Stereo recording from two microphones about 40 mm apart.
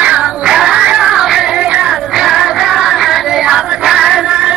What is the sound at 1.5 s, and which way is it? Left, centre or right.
Music, right.